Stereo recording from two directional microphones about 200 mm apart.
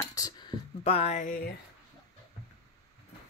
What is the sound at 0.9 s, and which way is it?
Speech, 30° left (ahead or behind).